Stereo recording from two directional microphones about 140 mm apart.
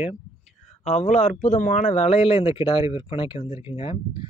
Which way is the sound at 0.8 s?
55° left (ahead or behind).